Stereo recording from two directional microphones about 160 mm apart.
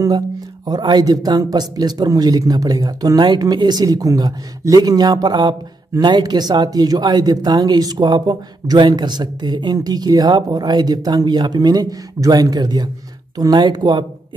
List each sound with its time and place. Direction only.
0.7 s speech: 25° right (ahead or behind)